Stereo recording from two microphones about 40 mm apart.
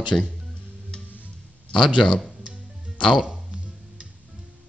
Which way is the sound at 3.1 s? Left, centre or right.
Right.